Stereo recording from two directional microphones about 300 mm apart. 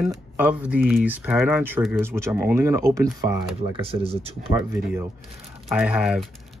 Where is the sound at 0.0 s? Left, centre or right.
Centre.